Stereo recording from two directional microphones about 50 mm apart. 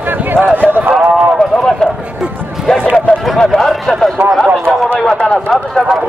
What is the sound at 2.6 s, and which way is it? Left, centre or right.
Speech, centre.